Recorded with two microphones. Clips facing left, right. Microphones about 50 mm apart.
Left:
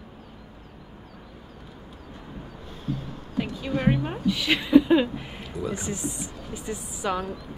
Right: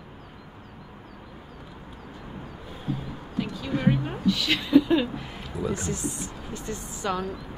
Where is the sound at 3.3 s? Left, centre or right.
Left.